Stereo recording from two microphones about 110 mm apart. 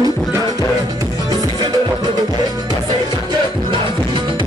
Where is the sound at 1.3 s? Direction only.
40° right (ahead or behind).